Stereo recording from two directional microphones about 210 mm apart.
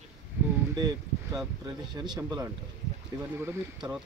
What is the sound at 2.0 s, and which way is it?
A child's voice, 20° right (ahead or behind).